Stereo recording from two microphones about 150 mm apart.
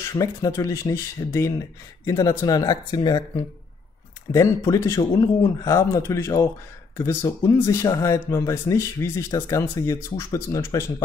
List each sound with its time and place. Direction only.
0.0 s speech: 20° left (ahead or behind)